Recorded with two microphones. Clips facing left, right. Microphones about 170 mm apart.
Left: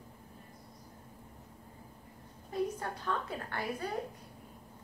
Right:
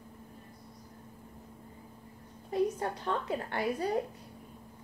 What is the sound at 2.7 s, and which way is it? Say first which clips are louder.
A woman's voice: right 3 dB; 30° right (ahead or behind).